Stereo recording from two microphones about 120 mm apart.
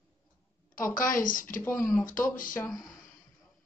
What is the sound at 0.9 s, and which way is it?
Speech, 90° left.